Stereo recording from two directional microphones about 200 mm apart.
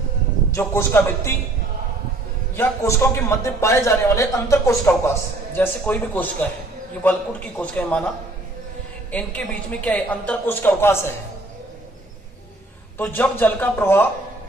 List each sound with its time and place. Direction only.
0.5 s a man's voice: 10° left (ahead or behind)
2.5 s a man's voice: 15° left (ahead or behind)
9.1 s a man's voice: 5° left (ahead or behind)
12.9 s a man's voice: 10° left (ahead or behind)